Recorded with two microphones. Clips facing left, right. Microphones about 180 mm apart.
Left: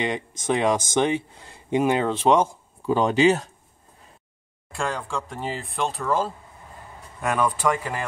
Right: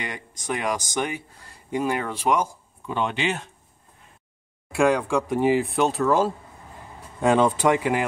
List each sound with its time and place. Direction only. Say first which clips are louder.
0.0 s speech: left 7 dB; 25° left (ahead or behind)
2.9 s speech: left 7 dB; 40° left (ahead or behind)
4.7 s speech: right 8 dB; 10° right (ahead or behind)
7.2 s speech: right 5 dB; 25° right (ahead or behind)